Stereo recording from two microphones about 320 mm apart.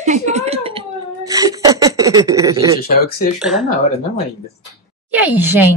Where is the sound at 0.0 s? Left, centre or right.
Right.